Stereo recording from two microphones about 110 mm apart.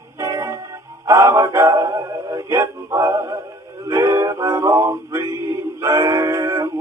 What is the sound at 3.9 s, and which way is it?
Music, 25° right (ahead or behind).